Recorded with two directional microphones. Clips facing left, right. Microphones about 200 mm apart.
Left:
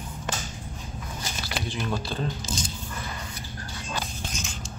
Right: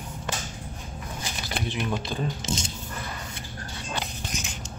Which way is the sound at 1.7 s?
20° right (ahead or behind).